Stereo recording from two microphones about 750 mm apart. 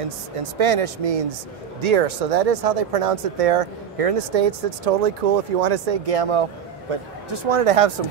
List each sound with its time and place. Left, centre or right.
0.4 s speech: right